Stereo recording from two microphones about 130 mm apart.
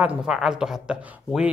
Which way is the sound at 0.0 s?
10° right (ahead or behind).